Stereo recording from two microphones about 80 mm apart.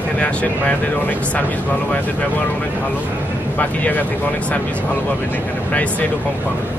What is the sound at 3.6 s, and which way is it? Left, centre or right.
Speech, left.